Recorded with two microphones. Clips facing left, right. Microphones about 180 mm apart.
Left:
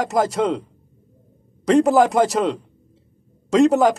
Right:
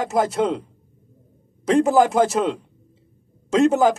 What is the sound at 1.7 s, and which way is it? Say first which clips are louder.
Speech: left 1 dB; centre (ahead or behind).